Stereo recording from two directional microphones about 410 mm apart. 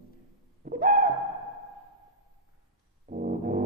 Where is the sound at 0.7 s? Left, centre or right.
Centre.